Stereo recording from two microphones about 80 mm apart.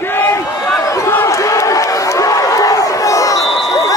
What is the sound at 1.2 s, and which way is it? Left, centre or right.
Crowd, left.